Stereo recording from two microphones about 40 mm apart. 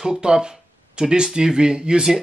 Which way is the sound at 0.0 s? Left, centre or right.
Centre.